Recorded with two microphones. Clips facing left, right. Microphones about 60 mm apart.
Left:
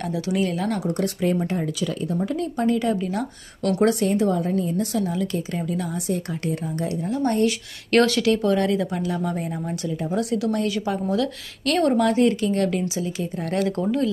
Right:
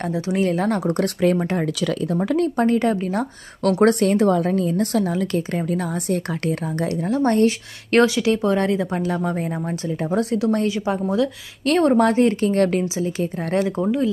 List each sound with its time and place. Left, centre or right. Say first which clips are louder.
0.0 s speech: right 3 dB; right
3.8 s a woman's voice: right 4 dB; right
7.4 s a woman's voice: right 3 dB; right
12.8 s a woman's voice: right 3 dB; right
13.2 s a woman's voice: right 4 dB; right
13.6 s a woman's voice: right 2 dB; centre